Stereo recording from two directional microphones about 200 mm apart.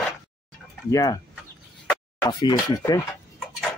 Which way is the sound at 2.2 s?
20° left (ahead or behind).